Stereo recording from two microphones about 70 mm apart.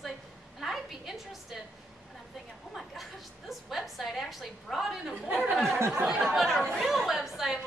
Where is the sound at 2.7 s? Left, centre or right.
Centre.